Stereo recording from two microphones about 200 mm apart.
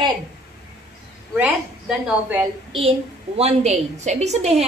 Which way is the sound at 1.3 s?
5° right (ahead or behind).